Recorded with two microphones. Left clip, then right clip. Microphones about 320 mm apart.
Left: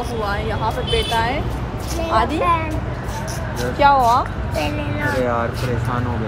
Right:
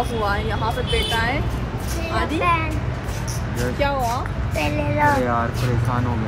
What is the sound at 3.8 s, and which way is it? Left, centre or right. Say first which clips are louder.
Speech: left 10 dB; centre.